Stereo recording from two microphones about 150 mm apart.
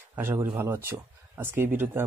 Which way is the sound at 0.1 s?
15° right (ahead or behind).